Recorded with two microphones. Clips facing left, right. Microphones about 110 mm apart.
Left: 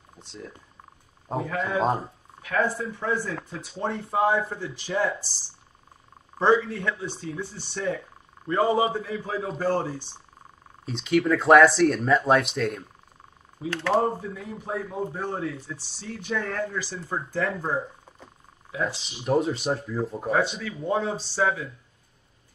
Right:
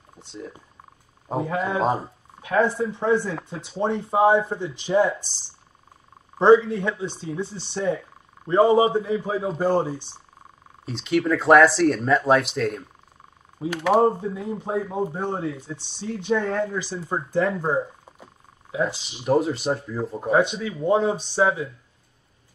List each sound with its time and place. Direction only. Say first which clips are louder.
0.2 s speech: right 4 dB; centre (ahead or behind)
1.4 s a man's voice: right 4 dB; 30° right (ahead or behind)
1.8 s speech: even; centre (ahead or behind)
2.4 s speech: right 5 dB; 25° right (ahead or behind)
6.7 s a man's voice: right 4 dB; 20° right (ahead or behind)
10.9 s speech: even; centre (ahead or behind)
13.7 s a man's voice: right 4 dB; 15° right (ahead or behind)
14.0 s speech: right 6 dB; 25° right (ahead or behind)
19.2 s speech: right 3 dB; centre (ahead or behind)
20.2 s speech: right 6 dB; 20° right (ahead or behind)